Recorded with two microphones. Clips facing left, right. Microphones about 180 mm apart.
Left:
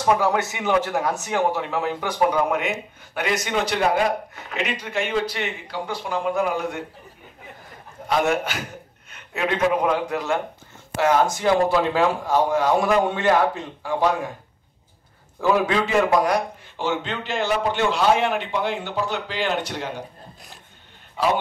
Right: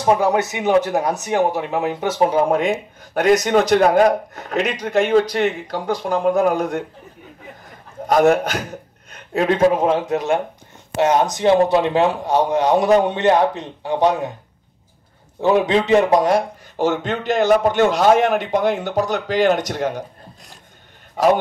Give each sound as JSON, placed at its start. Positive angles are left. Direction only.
{"t": 0.0, "sound": "a man's voice", "side_deg": -20}
{"t": 8.1, "sound": "a man's voice", "side_deg": -45}
{"t": 9.1, "sound": "a sound", "side_deg": -40}
{"t": 9.7, "sound": "a man's voice", "side_deg": -25}
{"t": 15.4, "sound": "a man's voice", "side_deg": -25}
{"t": 16.7, "sound": "a man's voice", "side_deg": -45}
{"t": 21.2, "sound": "a man's voice", "side_deg": -45}